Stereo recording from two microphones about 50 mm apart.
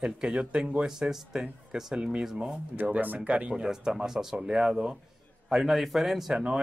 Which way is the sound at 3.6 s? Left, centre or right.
Centre.